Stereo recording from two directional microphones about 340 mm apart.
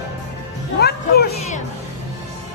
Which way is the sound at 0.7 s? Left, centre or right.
Left.